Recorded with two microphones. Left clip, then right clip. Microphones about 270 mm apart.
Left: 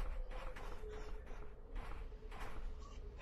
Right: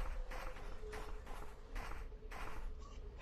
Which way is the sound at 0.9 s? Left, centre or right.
Centre.